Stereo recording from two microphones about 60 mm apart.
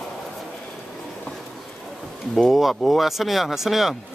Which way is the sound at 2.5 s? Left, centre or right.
Centre.